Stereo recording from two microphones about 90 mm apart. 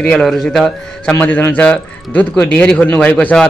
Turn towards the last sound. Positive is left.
turn(degrees=15)  # may be behind; listen again after turning